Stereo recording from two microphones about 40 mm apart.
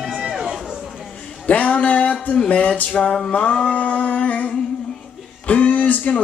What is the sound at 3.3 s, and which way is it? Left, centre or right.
Music, left.